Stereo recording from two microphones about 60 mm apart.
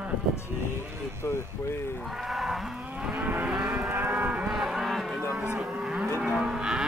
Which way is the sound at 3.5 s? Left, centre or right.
Centre.